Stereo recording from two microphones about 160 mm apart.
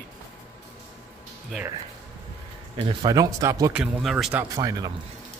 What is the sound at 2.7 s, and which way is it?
Speech, 35° right (ahead or behind).